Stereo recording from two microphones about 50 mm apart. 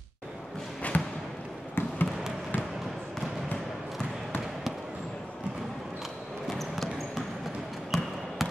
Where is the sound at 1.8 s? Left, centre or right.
Left.